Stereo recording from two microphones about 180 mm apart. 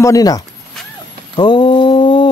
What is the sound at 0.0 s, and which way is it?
Speech, 20° left (ahead or behind).